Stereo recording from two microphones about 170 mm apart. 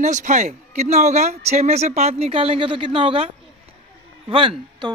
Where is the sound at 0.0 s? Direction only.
45° right (ahead or behind).